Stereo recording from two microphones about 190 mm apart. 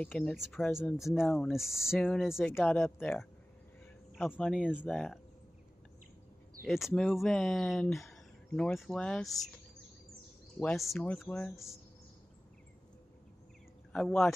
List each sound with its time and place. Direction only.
0.0 s speech: centre (ahead or behind)
2.5 s speech: 10° left (ahead or behind)
4.3 s speech: 5° left (ahead or behind)
6.6 s speech: centre (ahead or behind)
10.6 s speech: 5° left (ahead or behind)
13.9 s speech: 5° left (ahead or behind)